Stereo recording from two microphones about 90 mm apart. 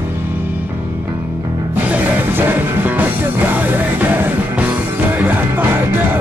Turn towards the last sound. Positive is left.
turn(degrees=-25)  # may be behind; listen again after turning